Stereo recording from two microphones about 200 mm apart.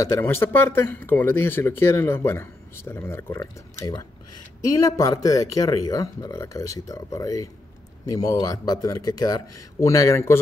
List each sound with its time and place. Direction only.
0.0 s speech: 15° left (ahead or behind)